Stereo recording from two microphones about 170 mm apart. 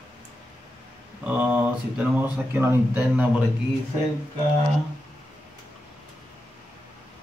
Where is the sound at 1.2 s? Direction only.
10° right (ahead or behind).